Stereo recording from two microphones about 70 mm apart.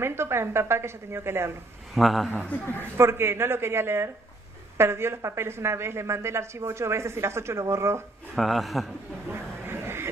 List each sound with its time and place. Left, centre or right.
0.0 s speech: right
2.0 s a man's voice: centre
2.3 s a man's voice: left
3.0 s speech: right
8.4 s a man's voice: centre
9.3 s a sound: right